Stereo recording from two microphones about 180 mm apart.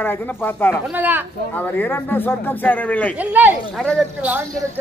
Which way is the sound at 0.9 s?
10° right (ahead or behind).